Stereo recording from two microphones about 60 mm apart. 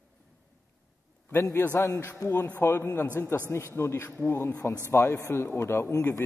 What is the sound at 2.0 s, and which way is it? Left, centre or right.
A man's voice, left.